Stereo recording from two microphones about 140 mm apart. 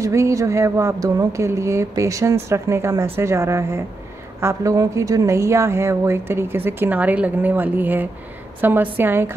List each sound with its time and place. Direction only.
0.0 s a woman's voice: 20° right (ahead or behind)